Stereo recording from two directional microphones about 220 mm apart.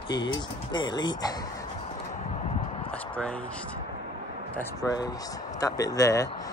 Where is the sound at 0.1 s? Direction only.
20° left (ahead or behind).